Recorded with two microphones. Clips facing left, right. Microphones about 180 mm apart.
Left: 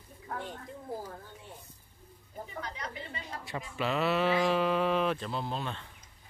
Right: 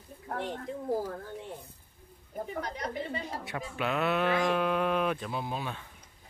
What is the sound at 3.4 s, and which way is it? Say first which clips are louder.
Speech: left 2 dB; centre (ahead or behind).